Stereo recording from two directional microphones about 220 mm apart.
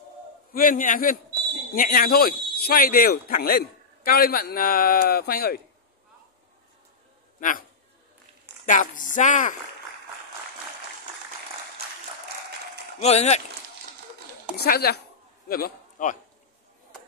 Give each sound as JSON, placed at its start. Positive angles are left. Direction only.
{"t": 0.5, "sound": "speech", "side_deg": 40}
{"t": 7.3, "sound": "speech", "side_deg": 35}
{"t": 8.6, "sound": "speech", "side_deg": 35}
{"t": 13.0, "sound": "speech", "side_deg": 30}
{"t": 14.6, "sound": "speech", "side_deg": 45}
{"t": 15.4, "sound": "a sound", "side_deg": 40}